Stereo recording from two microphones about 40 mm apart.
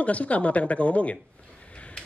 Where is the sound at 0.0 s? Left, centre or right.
Left.